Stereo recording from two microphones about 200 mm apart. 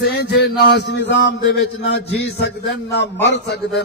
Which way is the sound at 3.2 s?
60° left (ahead or behind).